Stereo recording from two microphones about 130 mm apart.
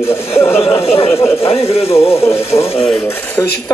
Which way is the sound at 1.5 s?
50° left (ahead or behind).